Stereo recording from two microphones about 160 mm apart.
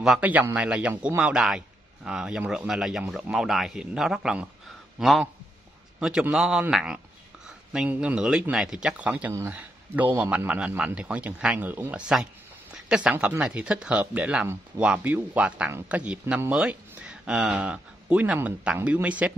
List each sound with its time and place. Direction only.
0.0 s speech: 5° right (ahead or behind)